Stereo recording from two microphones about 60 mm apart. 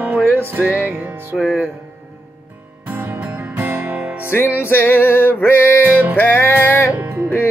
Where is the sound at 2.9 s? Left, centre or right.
Right.